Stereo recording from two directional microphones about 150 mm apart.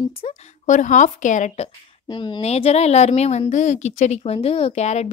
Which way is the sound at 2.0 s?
30° left (ahead or behind).